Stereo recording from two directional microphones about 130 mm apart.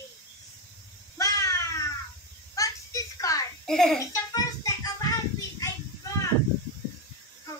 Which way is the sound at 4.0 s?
25° left (ahead or behind).